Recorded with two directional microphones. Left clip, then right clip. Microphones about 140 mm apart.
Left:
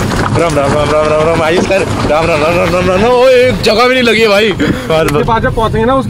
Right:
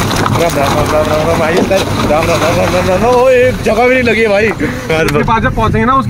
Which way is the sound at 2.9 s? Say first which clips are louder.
Left 1 dB; 85° left.